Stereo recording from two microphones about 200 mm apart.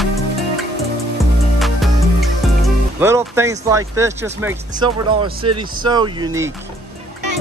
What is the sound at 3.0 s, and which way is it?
Speech, 15° right (ahead or behind).